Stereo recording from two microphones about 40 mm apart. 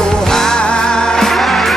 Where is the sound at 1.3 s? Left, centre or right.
Centre.